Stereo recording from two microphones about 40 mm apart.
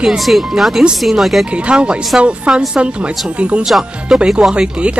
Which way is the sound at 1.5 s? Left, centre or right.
Right.